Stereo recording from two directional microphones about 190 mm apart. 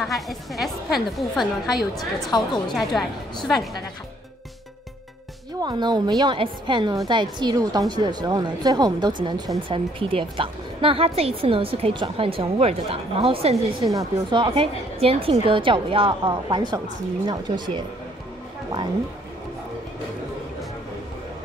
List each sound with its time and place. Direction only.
0.0 s a woman's voice: centre (ahead or behind)
5.6 s a woman's voice: 20° right (ahead or behind)
13.8 s a woman's voice: 15° right (ahead or behind)